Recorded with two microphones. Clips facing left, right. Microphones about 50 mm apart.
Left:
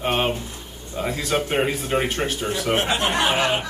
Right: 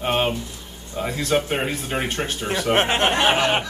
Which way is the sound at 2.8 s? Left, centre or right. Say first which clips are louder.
Right 4 dB; right.